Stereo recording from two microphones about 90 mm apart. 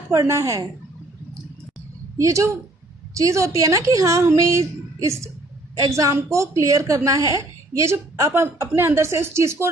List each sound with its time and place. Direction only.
0.1 s speech: 35° right (ahead or behind)
2.1 s a woman's voice: 35° right (ahead or behind)